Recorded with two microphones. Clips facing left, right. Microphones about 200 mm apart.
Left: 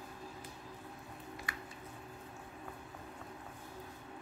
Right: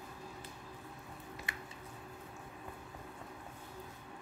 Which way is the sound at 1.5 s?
25° right (ahead or behind).